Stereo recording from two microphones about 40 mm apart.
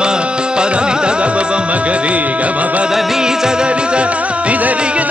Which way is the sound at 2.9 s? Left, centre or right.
Centre.